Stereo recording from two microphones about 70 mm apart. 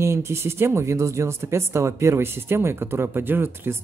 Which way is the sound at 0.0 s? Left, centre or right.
Right.